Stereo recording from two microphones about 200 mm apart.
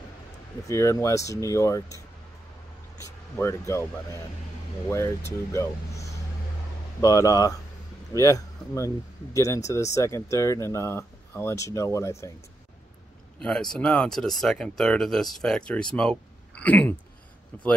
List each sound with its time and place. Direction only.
0.7 s speech: 15° left (ahead or behind)
3.0 s a sound: 15° left (ahead or behind)
4.8 s speech: 15° left (ahead or behind)
13.4 s speech: 5° left (ahead or behind)